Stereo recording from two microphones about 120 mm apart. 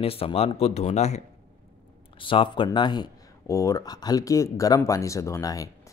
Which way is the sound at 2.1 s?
45° left (ahead or behind).